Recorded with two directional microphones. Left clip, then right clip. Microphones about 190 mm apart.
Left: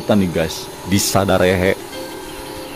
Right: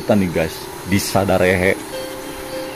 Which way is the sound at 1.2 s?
25° left (ahead or behind).